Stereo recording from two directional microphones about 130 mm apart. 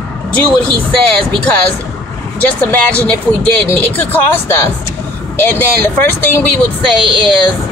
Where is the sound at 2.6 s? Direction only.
10° left (ahead or behind).